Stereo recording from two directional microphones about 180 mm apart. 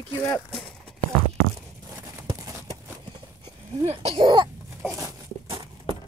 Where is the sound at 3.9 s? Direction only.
25° right (ahead or behind).